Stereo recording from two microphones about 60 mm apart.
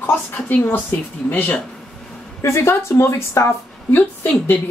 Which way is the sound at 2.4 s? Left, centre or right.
Left.